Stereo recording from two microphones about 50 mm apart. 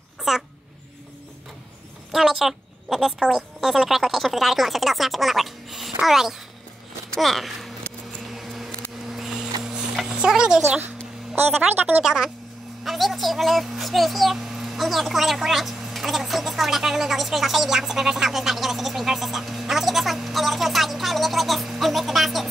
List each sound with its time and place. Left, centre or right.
0.3 s a child's voice: centre
2.1 s a woman's voice: centre
8.3 s a sound: centre
11.7 s speech: right
12.0 s a woman's voice: centre
12.8 s a child's voice: centre